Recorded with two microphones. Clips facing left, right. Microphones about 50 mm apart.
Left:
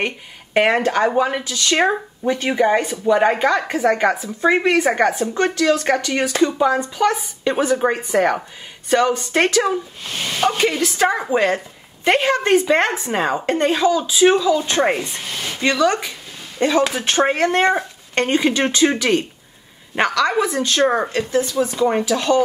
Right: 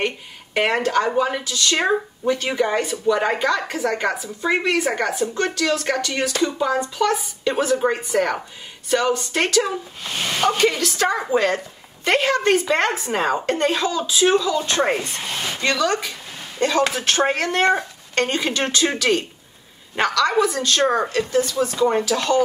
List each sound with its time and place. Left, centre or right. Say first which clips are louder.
0.7 s speech: left 2 dB; left
10.0 s speech: even; centre
10.6 s speech: left 2 dB; centre
15.2 s speech: right 1 dB; centre
15.6 s speech: left 4 dB; centre